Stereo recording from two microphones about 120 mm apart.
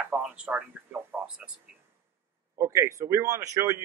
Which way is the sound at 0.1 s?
15° right (ahead or behind).